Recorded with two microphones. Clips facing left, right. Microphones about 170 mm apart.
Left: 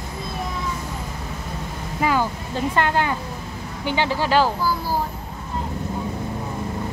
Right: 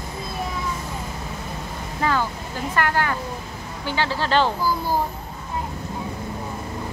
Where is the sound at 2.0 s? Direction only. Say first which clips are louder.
Left 2 dB; 15° left (ahead or behind).